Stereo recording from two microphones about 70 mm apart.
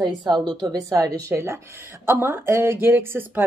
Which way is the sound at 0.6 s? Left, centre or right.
Right.